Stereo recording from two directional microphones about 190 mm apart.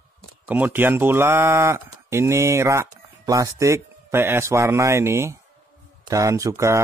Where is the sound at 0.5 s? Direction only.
10° right (ahead or behind).